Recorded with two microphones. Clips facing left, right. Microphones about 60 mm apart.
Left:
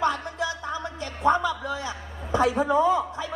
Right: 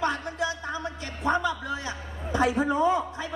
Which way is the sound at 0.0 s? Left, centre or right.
Right.